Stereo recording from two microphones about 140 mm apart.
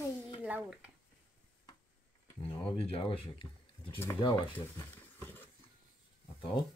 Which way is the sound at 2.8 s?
40° left (ahead or behind).